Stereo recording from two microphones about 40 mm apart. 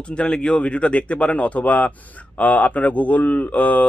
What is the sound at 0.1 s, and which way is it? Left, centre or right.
Speech, left.